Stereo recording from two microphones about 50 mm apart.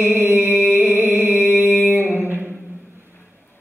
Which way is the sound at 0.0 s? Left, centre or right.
Right.